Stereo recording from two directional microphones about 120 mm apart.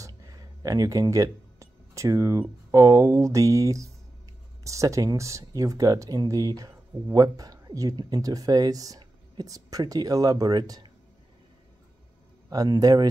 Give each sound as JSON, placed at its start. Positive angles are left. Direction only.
{"t": 0.0, "sound": "a sound", "side_deg": -30}
{"t": 2.7, "sound": "speech", "side_deg": -25}
{"t": 12.4, "sound": "speech", "side_deg": -30}